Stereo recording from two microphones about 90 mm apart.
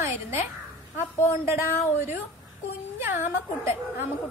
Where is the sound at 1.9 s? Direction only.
25° right (ahead or behind).